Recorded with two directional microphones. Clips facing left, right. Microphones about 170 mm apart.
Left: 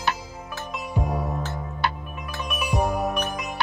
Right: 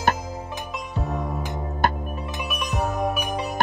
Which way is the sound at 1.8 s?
45° right (ahead or behind).